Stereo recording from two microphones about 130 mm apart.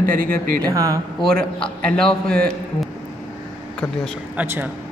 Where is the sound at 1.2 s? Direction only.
10° left (ahead or behind).